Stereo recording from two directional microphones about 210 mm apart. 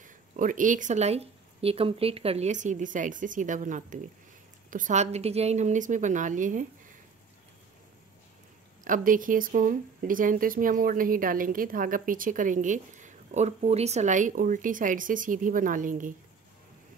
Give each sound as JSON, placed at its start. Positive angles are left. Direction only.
{"t": 0.0, "sound": "speech", "side_deg": -40}
{"t": 8.8, "sound": "speech", "side_deg": -40}